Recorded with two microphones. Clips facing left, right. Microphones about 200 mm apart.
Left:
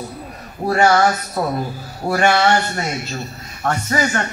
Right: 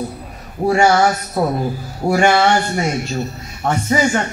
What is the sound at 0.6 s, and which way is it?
Speech, 10° right (ahead or behind).